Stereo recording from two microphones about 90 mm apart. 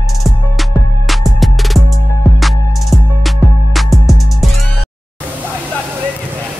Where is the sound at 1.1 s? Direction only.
Centre (ahead or behind).